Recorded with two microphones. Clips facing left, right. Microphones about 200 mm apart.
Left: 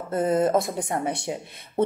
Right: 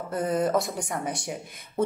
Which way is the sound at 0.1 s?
25° left (ahead or behind).